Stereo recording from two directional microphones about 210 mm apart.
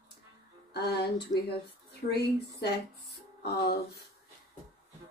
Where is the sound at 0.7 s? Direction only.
50° left (ahead or behind).